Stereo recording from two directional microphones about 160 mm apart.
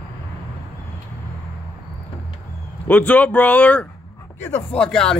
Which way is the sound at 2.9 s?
10° left (ahead or behind).